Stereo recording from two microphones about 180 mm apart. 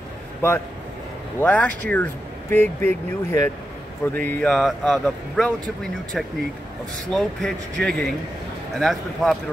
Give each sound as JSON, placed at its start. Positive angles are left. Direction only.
{"t": 1.4, "sound": "speech", "side_deg": 10}